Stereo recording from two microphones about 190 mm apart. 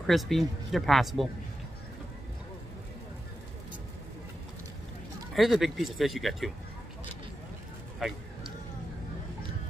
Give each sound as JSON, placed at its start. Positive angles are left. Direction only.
{"t": 0.0, "sound": "speech", "side_deg": 0}
{"t": 5.3, "sound": "speech", "side_deg": 0}